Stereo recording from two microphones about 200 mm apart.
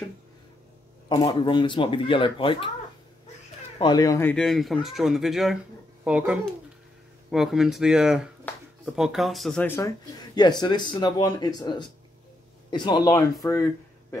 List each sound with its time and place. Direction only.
1.0 s speech: 20° left (ahead or behind)
3.7 s speech: 20° left (ahead or behind)